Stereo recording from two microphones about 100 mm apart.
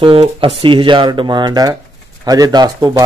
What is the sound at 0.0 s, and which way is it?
Speech, 60° right (ahead or behind).